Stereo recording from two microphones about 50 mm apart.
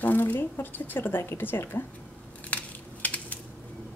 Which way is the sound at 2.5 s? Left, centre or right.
Left.